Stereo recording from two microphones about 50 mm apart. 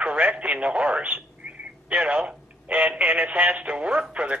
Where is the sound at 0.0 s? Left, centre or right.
Right.